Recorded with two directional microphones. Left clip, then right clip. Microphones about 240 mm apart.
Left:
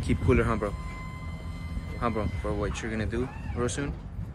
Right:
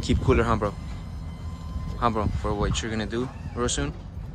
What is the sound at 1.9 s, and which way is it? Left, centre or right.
Speech, centre.